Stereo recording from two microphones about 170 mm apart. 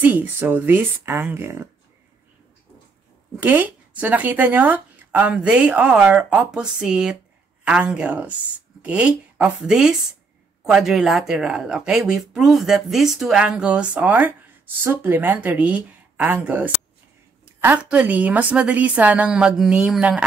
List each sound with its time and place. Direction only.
0.0 s speech: 10° right (ahead or behind)
3.3 s speech: 10° right (ahead or behind)